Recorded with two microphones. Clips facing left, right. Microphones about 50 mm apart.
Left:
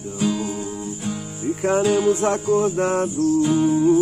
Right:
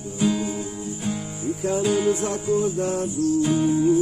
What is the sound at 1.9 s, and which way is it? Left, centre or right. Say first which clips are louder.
Music: left 2 dB; centre.